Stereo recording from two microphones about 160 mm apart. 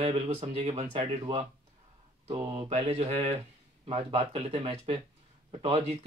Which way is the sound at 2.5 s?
40° right (ahead or behind).